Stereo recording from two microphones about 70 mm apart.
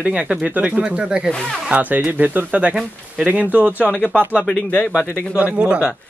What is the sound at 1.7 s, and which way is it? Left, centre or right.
Speech, right.